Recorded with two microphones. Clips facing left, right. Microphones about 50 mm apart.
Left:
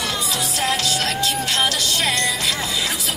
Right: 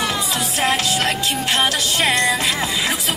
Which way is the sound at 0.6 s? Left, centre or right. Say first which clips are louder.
Right 3 dB; right.